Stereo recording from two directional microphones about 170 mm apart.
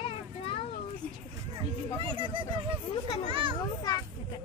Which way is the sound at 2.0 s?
30° right (ahead or behind).